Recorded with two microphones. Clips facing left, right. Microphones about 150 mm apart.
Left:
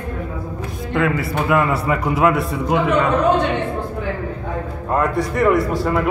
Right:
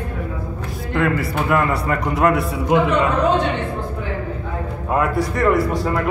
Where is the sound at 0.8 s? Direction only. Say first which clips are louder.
Even; centre (ahead or behind).